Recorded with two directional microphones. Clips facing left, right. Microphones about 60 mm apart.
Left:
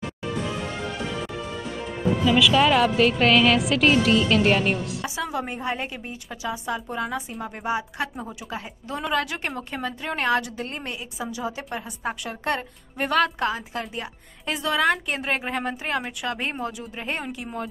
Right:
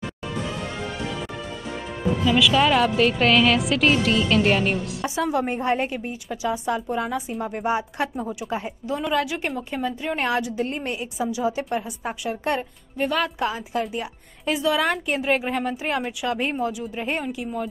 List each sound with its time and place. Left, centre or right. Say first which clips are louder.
2.2 s a woman's voice: even; centre
5.0 s a woman's voice: right 5 dB; right
7.6 s a woman's voice: right 2 dB; right; by 10.1 s centre
10.1 s a woman's voice: left 2 dB; centre
11.7 s a woman's voice: right 3 dB; centre
12.9 s a woman's voice: left 1 dB; centre
13.7 s a woman's voice: right 5 dB; centre